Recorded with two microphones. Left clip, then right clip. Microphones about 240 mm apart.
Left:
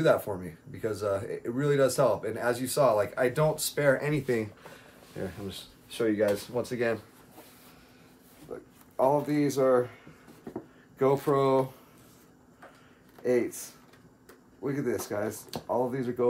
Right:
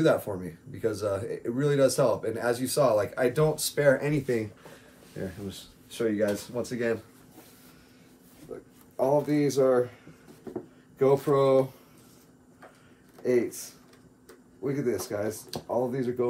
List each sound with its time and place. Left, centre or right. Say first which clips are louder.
0.0 s speech: even; centre
5.1 s speech: even; left
8.5 s speech: left 1 dB; left
10.5 s a sound: right 3 dB; centre
11.2 s speech: right 2 dB; centre
13.2 s speech: right 1 dB; centre